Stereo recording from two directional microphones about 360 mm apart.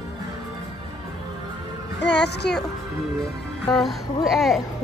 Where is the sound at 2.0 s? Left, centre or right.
Left.